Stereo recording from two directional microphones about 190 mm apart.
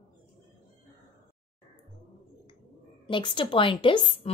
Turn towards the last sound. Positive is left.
turn(degrees=25)  # may be behind; listen again after turning